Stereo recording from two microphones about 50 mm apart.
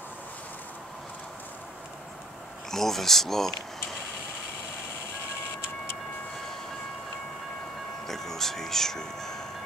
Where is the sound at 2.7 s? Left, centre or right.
Centre.